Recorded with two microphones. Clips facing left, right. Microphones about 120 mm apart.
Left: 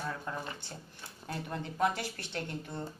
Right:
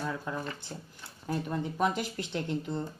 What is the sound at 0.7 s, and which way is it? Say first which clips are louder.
Speech: right 3 dB; 15° right (ahead or behind).